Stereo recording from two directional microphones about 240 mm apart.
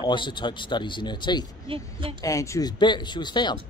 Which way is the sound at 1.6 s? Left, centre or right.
Right.